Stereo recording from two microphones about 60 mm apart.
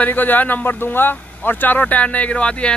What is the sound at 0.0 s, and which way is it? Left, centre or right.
Speech, left.